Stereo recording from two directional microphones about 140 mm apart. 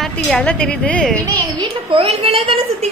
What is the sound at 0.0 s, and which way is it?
A woman's voice, 5° left (ahead or behind).